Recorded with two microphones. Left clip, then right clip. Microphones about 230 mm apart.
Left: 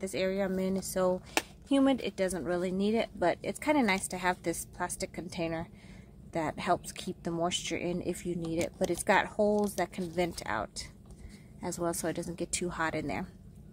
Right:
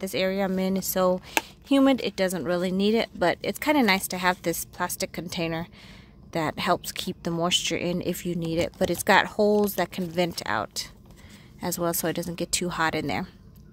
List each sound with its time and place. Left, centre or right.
0.0 s speech: right